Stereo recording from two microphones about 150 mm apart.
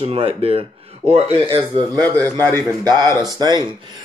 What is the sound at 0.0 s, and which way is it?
Speech, 40° right (ahead or behind).